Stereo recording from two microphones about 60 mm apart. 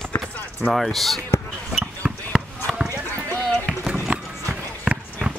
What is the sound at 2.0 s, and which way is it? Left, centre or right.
Chop, right.